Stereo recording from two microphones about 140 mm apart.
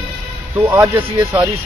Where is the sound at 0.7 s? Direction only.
15° right (ahead or behind).